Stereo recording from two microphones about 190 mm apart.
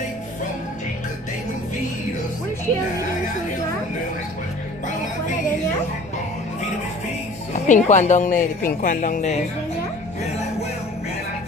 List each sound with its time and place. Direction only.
7.5 s a woman's voice: 40° left (ahead or behind)